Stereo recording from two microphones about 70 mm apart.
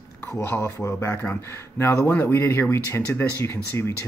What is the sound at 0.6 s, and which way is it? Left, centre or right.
Speech, left.